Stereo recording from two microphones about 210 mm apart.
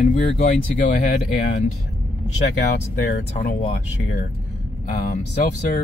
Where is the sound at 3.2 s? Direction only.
50° left (ahead or behind).